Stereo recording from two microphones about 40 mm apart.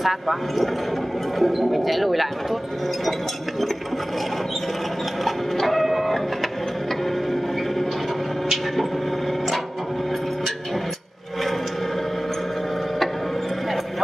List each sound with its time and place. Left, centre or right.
0.0 s speech: centre
5.2 s printer: centre